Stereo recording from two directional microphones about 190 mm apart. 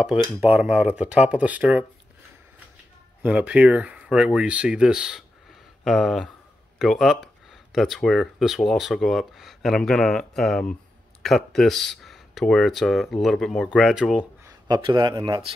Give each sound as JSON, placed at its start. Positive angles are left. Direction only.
{"t": 0.4, "sound": "speech", "side_deg": -5}
{"t": 3.2, "sound": "speech", "side_deg": -5}
{"t": 14.4, "sound": "speech", "side_deg": -20}